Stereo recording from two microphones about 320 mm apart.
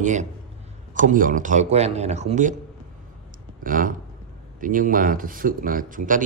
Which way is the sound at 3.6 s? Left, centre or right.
Right.